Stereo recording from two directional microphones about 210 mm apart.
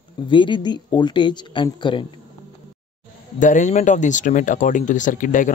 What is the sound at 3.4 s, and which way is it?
Speech, 35° left (ahead or behind).